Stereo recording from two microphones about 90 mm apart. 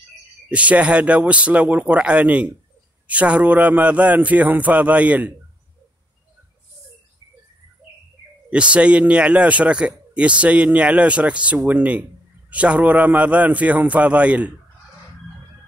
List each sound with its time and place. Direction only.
0.5 s speech: 15° right (ahead or behind)
8.5 s speech: 15° right (ahead or behind)